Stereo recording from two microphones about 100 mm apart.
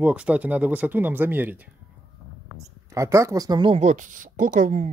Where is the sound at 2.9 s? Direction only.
30° right (ahead or behind).